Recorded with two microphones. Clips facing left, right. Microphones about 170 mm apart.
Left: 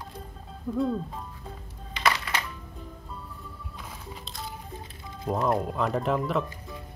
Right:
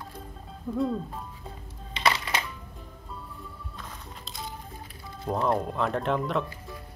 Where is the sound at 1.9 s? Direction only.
25° right (ahead or behind).